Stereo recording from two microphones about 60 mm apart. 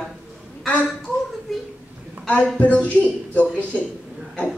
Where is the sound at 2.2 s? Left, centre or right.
Left.